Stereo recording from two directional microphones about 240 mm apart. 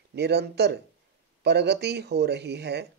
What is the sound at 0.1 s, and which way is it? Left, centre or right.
Speech, right.